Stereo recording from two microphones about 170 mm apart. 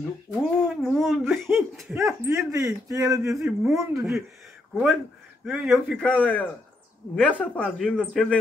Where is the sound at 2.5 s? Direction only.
20° right (ahead or behind).